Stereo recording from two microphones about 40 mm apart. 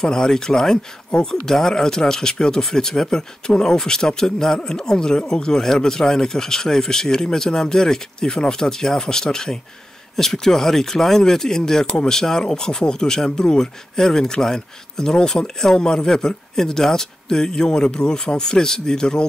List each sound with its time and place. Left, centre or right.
0.0 s speech: centre